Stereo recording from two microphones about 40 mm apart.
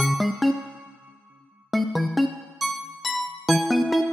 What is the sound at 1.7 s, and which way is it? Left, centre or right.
Music, centre.